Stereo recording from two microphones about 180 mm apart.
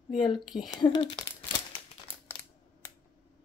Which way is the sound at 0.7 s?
25° left (ahead or behind).